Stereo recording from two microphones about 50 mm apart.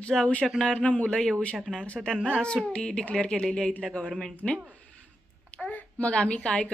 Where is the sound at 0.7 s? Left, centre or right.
Left.